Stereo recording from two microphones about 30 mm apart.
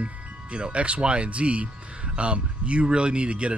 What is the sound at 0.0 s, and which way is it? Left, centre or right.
Speech, right.